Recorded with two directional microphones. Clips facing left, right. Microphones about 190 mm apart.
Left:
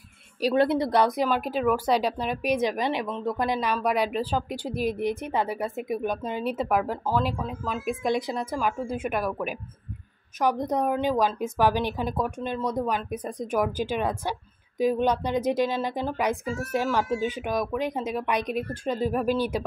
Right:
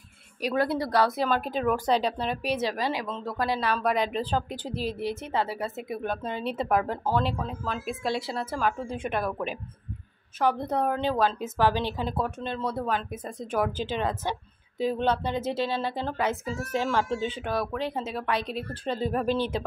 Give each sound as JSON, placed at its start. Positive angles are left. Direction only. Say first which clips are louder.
{"t": 0.4, "sound": "a woman's voice", "louder": "left 4 dB", "side_deg": 30}
{"t": 0.7, "sound": "speech", "louder": "left 2 dB", "side_deg": 20}